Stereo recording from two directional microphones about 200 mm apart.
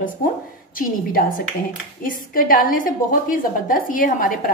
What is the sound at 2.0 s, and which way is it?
A woman's voice, 45° left (ahead or behind).